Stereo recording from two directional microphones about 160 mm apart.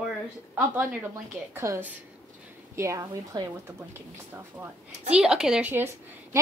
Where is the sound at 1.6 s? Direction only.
15° right (ahead or behind).